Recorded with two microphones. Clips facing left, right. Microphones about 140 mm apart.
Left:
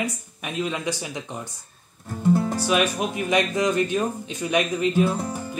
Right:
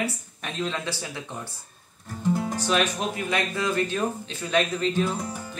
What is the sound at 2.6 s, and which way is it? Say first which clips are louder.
Speech: left 2 dB; 10° left (ahead or behind).